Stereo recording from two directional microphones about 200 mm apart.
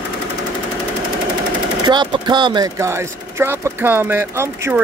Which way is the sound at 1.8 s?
20° right (ahead or behind).